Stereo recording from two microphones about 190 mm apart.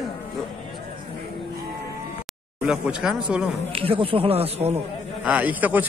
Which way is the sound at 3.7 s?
30° right (ahead or behind).